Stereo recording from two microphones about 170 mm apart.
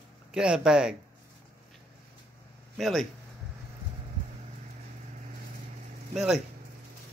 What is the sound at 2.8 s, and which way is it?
Speech, centre (ahead or behind).